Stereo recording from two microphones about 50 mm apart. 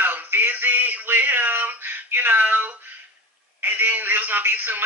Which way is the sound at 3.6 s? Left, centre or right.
Right.